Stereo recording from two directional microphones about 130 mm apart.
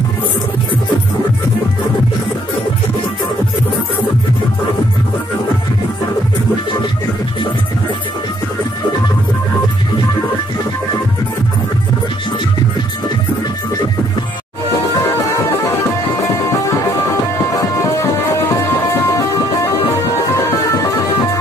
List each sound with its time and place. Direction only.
16.6 s music: 25° left (ahead or behind)